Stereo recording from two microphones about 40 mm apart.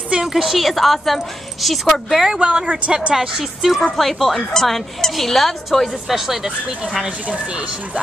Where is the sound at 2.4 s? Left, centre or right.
Right.